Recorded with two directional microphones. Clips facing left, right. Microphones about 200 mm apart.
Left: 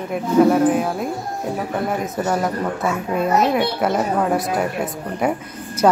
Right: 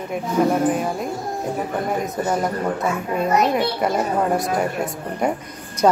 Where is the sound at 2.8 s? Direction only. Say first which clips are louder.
Left 1 dB; 5° left (ahead or behind).